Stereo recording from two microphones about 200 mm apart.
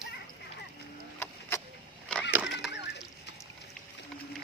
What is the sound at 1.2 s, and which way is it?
Vehicle, 10° left (ahead or behind).